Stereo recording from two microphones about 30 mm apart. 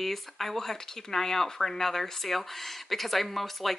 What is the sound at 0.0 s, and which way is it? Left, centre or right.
Speech, centre.